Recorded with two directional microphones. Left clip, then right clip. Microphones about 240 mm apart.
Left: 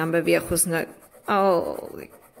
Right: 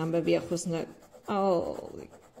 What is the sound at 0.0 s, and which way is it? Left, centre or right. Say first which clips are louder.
A woman's voice: left 6 dB; centre.